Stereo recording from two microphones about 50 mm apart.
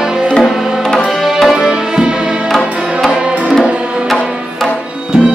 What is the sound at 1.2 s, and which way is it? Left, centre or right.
Music, centre.